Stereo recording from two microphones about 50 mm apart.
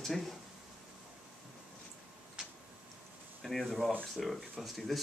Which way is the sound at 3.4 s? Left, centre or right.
Centre.